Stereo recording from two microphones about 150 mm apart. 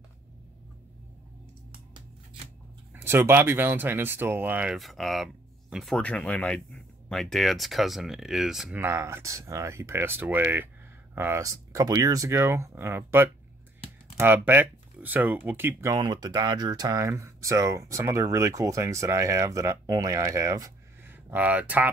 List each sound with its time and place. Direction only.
2.9 s speech: 15° right (ahead or behind)
8.8 s speech: 15° right (ahead or behind)